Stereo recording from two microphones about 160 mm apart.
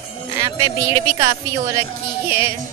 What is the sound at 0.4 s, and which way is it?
Speech, 20° right (ahead or behind).